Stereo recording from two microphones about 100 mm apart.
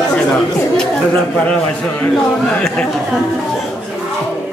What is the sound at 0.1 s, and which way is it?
Speech, 10° left (ahead or behind).